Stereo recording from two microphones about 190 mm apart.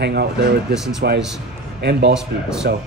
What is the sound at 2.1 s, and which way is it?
Speech, 5° right (ahead or behind).